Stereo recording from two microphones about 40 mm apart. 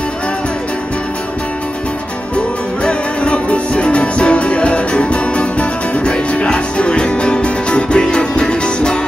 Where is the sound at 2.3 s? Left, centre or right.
Left.